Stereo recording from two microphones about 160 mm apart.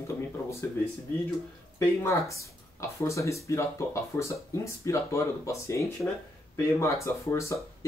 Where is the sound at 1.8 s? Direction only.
15° left (ahead or behind).